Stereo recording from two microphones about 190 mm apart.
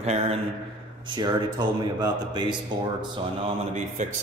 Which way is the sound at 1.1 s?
20° right (ahead or behind).